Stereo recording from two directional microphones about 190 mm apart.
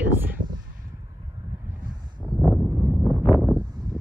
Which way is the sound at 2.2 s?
Centre (ahead or behind).